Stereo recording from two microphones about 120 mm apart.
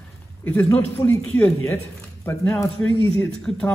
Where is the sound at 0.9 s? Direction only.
25° left (ahead or behind).